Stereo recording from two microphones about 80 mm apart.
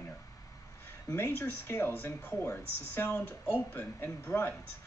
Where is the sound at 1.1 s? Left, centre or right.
Left.